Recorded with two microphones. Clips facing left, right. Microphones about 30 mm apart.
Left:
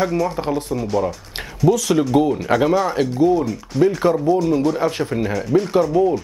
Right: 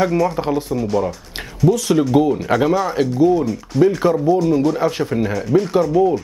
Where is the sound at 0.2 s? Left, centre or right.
Centre.